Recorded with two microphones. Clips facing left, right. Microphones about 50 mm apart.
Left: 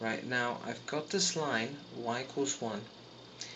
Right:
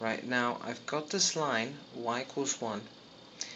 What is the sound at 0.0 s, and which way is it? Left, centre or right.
Speech, centre.